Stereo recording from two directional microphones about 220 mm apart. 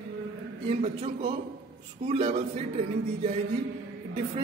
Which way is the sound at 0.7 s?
25° right (ahead or behind).